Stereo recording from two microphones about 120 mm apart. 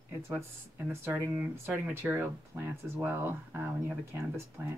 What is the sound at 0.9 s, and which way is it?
Speech, 20° right (ahead or behind).